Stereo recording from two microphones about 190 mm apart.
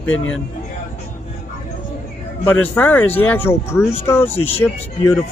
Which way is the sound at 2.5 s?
10° left (ahead or behind).